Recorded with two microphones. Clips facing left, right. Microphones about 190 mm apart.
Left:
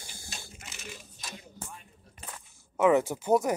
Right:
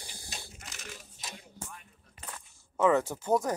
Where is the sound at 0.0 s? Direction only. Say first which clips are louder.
Even; 35° right (ahead or behind).